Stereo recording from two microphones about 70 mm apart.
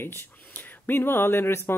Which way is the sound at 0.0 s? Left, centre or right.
Left.